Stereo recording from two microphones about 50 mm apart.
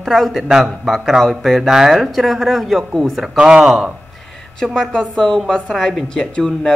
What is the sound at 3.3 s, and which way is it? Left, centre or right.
Speech, centre.